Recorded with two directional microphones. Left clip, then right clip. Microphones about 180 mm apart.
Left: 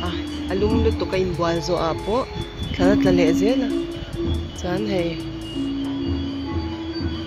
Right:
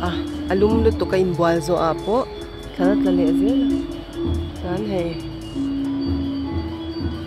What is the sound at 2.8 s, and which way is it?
Speech, 5° left (ahead or behind).